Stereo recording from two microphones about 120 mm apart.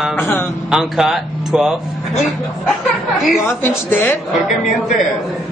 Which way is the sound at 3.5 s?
20° left (ahead or behind).